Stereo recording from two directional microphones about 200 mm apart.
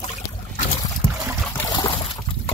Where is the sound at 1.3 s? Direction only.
5° left (ahead or behind).